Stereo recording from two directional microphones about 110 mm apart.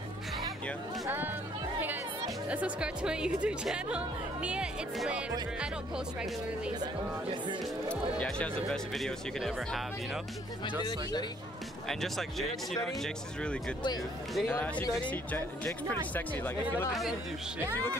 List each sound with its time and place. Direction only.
1.0 s speech: 15° right (ahead or behind)
2.5 s speech: 10° right (ahead or behind)
7.9 s speech: 10° left (ahead or behind)
10.8 s speech: 40° left (ahead or behind)
11.9 s speech: centre (ahead or behind); by 16.5 s 20° left (ahead or behind)